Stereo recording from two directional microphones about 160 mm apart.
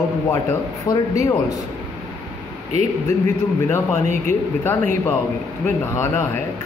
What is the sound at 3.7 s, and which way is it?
A man's voice, 15° left (ahead or behind).